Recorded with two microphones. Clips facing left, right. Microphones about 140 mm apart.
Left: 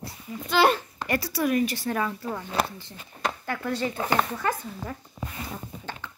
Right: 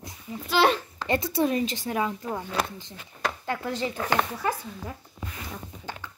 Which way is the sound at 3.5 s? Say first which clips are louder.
Left 1 dB; 15° right (ahead or behind).